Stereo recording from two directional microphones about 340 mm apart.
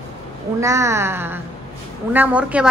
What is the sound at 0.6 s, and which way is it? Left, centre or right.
A woman's voice, centre.